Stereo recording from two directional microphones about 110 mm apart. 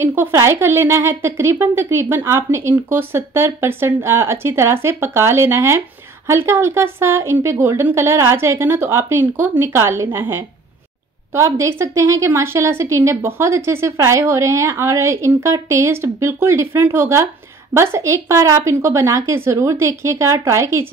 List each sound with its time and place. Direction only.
0.0 s a woman's voice: 20° right (ahead or behind)